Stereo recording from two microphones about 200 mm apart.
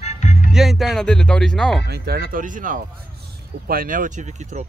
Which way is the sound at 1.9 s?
50° right (ahead or behind).